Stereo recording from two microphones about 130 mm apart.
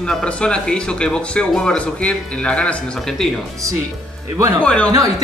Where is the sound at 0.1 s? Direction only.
10° left (ahead or behind).